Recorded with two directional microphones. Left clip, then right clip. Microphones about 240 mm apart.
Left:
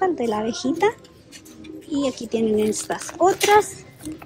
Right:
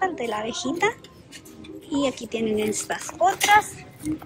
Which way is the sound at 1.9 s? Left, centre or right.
Centre.